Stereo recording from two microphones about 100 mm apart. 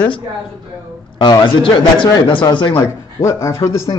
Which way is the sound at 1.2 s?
50° left (ahead or behind).